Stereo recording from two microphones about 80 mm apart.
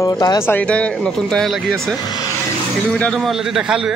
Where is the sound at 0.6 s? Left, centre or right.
Centre.